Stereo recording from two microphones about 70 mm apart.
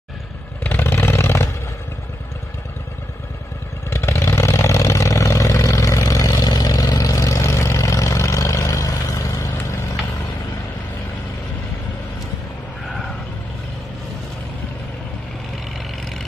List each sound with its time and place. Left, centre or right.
0.7 s vehicle: left
3.9 s vehicle: left